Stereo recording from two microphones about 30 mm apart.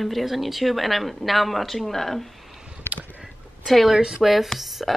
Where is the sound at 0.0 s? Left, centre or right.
Centre.